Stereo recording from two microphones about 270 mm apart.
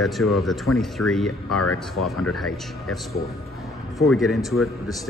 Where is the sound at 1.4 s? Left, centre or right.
Left.